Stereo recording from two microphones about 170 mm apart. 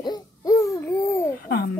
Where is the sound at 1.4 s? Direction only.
65° left (ahead or behind).